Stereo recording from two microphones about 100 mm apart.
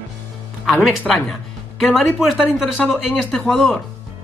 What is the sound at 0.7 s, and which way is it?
Speech, 5° left (ahead or behind).